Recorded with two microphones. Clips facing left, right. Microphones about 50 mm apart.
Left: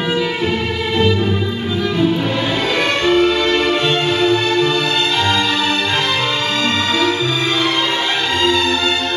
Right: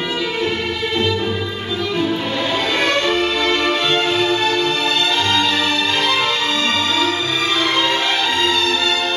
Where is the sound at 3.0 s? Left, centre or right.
Centre.